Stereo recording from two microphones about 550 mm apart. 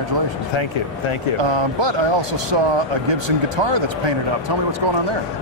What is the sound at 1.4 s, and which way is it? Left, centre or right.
Speech, right.